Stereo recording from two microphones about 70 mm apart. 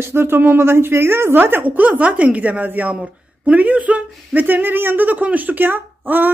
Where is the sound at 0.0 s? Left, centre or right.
Right.